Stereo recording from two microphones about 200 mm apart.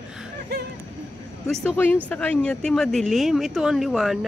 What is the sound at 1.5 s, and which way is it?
Speech, centre (ahead or behind).